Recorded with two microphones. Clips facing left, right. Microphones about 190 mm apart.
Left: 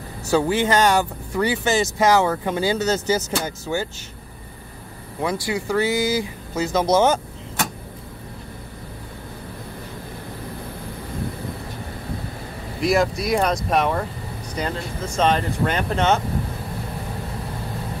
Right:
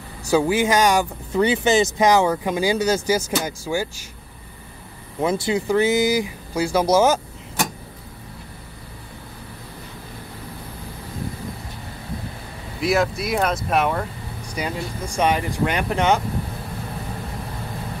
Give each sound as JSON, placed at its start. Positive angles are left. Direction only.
{"t": 0.3, "sound": "speech", "side_deg": -10}
{"t": 5.2, "sound": "speech", "side_deg": -25}
{"t": 12.8, "sound": "speech", "side_deg": 0}